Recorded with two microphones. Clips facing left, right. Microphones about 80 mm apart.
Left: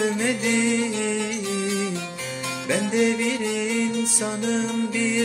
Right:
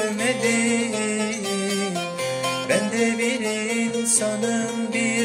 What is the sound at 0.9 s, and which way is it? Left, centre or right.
Music, centre.